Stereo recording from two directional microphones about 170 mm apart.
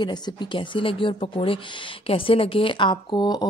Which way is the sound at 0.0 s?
25° left (ahead or behind).